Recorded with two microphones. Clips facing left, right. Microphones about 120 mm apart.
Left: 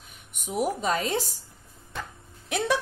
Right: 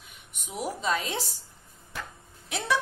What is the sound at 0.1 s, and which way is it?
Speech, 50° left (ahead or behind).